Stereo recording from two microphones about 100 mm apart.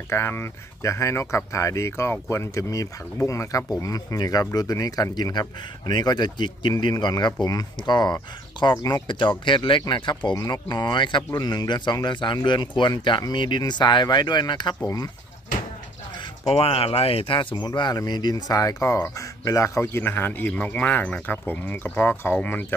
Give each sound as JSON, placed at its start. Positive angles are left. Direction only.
{"t": 0.1, "sound": "speech", "side_deg": 25}
{"t": 8.7, "sound": "speech", "side_deg": 35}
{"t": 9.0, "sound": "speech", "side_deg": 50}
{"t": 14.8, "sound": "speech", "side_deg": 35}
{"t": 16.2, "sound": "speech", "side_deg": 70}
{"t": 17.4, "sound": "speech", "side_deg": 50}